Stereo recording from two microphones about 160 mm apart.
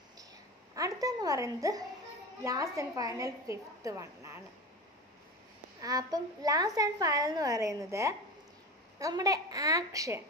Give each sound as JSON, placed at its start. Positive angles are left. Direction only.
{"t": 0.7, "sound": "a woman's voice", "side_deg": -20}
{"t": 5.8, "sound": "a woman's voice", "side_deg": -20}